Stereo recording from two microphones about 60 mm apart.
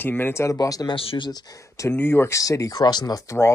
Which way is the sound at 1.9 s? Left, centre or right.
Left.